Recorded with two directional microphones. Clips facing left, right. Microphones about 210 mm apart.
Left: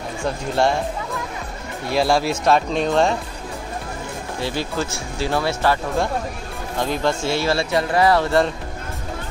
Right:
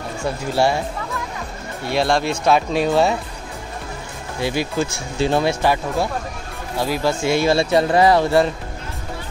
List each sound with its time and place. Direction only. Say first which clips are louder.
1.9 s speech: even; centre (ahead or behind)
4.4 s speech: right 4 dB; 15° right (ahead or behind)
7.3 s speech: right 4 dB; 20° right (ahead or behind)